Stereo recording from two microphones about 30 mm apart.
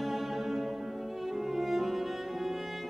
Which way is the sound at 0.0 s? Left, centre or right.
Centre.